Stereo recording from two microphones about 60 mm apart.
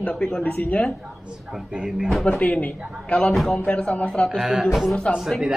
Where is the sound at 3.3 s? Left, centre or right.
Centre.